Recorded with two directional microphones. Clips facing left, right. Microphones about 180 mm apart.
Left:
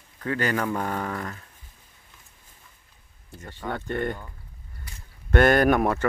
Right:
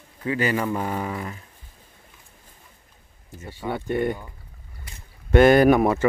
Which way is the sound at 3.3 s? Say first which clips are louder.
Right 3 dB; 10° right (ahead or behind).